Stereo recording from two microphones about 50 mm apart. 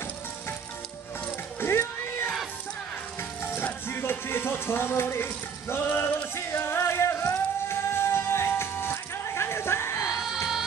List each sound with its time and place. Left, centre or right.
1.6 s a sound: left
3.2 s music: left
10.0 s music: centre